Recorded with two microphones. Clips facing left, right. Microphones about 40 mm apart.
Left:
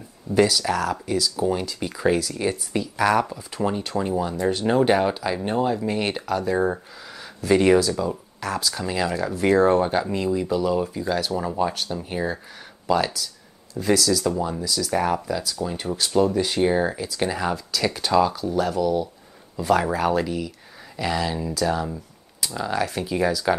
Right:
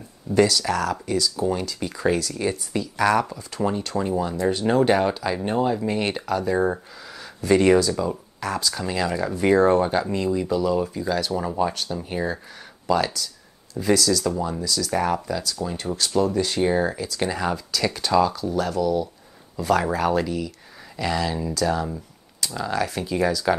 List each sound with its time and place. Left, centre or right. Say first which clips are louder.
0.3 s speech: even; centre